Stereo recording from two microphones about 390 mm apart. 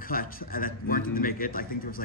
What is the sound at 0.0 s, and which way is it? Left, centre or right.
A man's voice, left.